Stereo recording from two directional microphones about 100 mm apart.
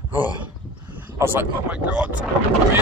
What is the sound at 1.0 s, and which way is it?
Speech, 20° right (ahead or behind).